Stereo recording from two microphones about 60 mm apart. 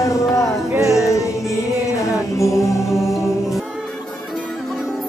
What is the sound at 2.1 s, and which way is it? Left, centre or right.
Music, left.